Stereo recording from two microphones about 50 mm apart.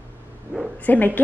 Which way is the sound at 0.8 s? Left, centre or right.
Left.